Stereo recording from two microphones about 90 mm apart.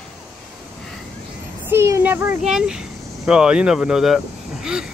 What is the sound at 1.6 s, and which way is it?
Speech, 30° right (ahead or behind).